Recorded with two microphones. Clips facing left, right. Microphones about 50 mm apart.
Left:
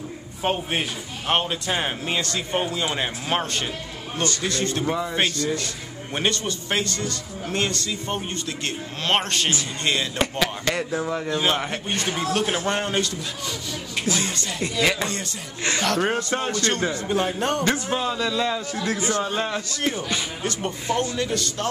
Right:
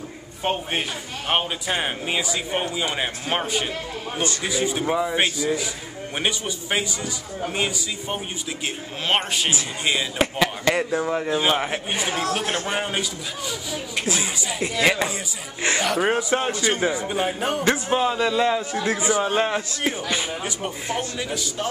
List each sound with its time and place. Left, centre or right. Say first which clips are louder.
0.4 s speech: even; centre
12.2 s a man's voice: left 1 dB; centre
19.2 s speech: right 4 dB; right; by 21.6 s centre